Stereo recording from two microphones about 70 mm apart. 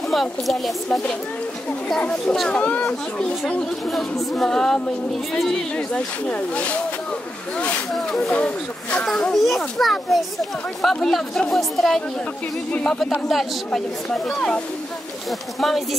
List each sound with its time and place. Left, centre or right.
0.1 s a child's voice: centre
2.6 s speech: centre
3.9 s a child's voice: centre
7.9 s a child's voice: centre
8.3 s a child's voice: centre